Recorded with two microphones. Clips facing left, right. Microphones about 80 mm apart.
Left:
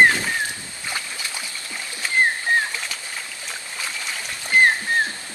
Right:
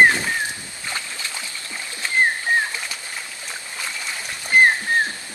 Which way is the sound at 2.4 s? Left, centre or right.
Centre.